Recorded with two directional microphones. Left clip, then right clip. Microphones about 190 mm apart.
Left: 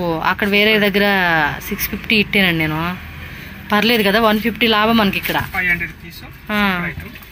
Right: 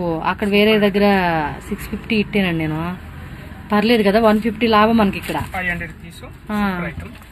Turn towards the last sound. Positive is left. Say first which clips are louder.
# left 5 dB
turn(degrees=0)  # may be behind; listen again after turning